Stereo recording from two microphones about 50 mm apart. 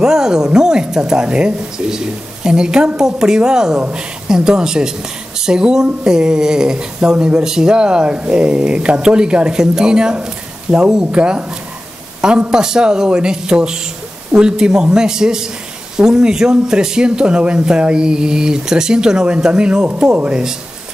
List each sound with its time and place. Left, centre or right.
0.0 s speech: centre